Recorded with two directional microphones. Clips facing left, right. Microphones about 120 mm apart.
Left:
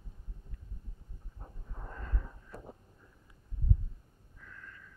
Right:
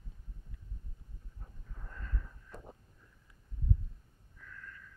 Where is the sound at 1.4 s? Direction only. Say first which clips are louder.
Left 7 dB; 40° left (ahead or behind).